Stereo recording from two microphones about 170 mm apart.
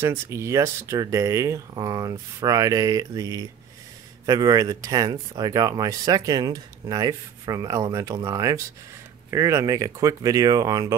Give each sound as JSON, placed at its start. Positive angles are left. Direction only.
{"t": 0.0, "sound": "speech", "side_deg": -15}